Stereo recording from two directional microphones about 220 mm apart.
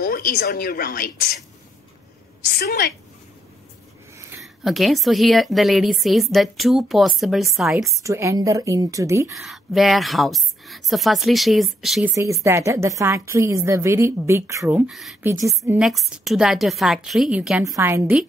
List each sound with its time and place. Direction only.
0.0 s speech: 45° left (ahead or behind)
2.6 s speech: 45° left (ahead or behind)
4.4 s a woman's voice: centre (ahead or behind)
8.0 s a woman's voice: 15° right (ahead or behind)
9.3 s a woman's voice: centre (ahead or behind)
12.4 s a woman's voice: 10° right (ahead or behind)
15.2 s a woman's voice: 15° right (ahead or behind)
15.8 s a woman's voice: centre (ahead or behind)